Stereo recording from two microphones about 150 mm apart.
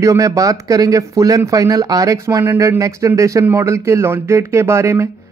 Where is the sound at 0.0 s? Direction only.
20° right (ahead or behind).